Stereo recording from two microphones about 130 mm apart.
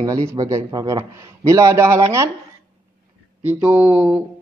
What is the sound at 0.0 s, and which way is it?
Speech, 25° right (ahead or behind).